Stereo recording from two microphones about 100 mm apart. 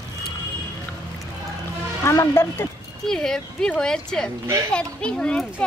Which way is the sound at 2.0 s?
30° left (ahead or behind).